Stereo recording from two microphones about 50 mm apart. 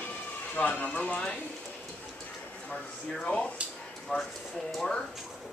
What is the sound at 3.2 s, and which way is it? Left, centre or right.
Speech, left.